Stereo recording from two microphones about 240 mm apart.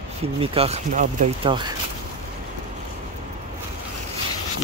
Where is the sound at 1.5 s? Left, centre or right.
Centre.